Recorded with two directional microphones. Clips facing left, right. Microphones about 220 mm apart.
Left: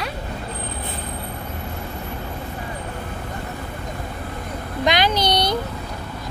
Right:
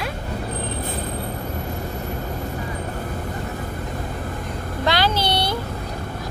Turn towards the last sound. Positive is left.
turn(degrees=15)  # may be behind; listen again after turning